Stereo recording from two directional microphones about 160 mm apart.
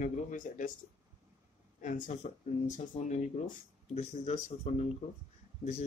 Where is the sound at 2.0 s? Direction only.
50° left (ahead or behind).